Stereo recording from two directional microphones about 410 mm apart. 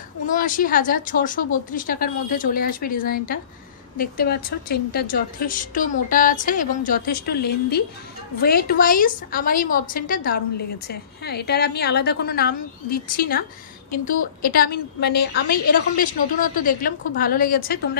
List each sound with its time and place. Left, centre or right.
0.3 s a woman's voice: centre